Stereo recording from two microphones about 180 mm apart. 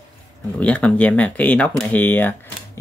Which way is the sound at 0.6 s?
5° left (ahead or behind).